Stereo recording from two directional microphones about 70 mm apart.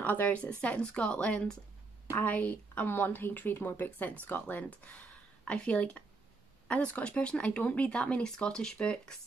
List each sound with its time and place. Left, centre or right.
0.0 s a woman's voice: left